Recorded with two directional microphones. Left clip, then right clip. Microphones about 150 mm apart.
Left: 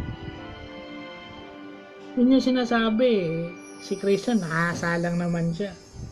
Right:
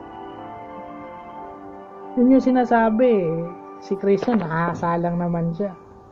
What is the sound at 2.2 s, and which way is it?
Speech, 20° left (ahead or behind).